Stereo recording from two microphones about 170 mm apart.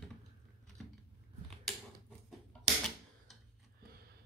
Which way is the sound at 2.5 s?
5° left (ahead or behind).